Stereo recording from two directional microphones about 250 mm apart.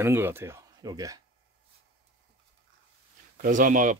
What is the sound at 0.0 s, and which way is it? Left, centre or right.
Speech, centre.